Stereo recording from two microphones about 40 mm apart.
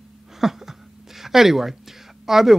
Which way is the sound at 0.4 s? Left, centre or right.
Centre.